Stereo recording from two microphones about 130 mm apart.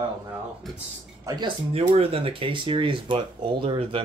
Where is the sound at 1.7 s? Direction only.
50° right (ahead or behind).